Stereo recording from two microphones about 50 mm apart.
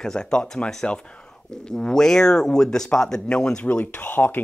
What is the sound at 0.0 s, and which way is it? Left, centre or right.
Speech, centre.